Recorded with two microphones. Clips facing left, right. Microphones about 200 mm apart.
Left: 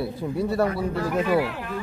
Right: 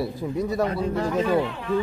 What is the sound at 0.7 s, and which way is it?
Speech, 20° right (ahead or behind).